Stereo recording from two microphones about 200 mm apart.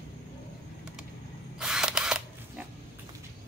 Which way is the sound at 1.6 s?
5° right (ahead or behind).